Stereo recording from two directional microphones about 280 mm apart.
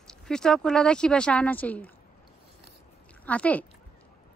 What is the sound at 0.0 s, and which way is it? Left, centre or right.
Speech, centre.